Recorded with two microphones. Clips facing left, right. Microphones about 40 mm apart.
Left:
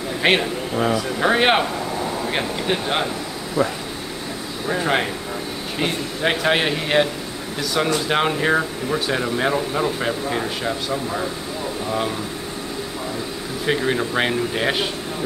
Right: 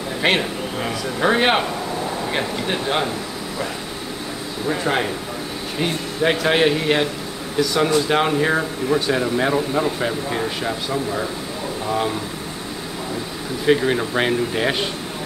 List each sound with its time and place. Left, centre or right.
0.2 s speech: centre
4.6 s speech: centre
13.7 s speech: centre